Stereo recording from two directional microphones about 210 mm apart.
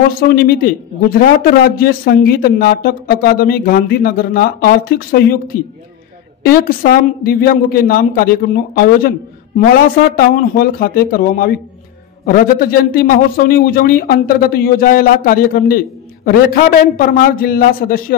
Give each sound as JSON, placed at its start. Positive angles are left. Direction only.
{"t": 0.2, "sound": "a man's voice", "side_deg": 45}